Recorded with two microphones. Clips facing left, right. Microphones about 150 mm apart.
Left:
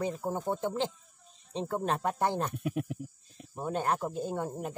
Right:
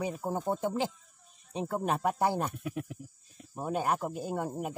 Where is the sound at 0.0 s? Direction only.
10° right (ahead or behind).